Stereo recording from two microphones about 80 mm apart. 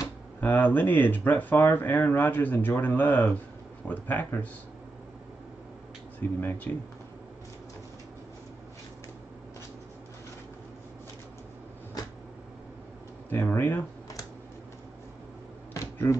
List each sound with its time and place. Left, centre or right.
0.4 s speech: left
6.1 s speech: left
13.3 s speech: left